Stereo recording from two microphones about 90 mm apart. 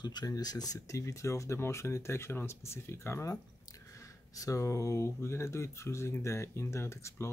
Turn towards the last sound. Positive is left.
turn(degrees=30)  # may be behind; listen again after turning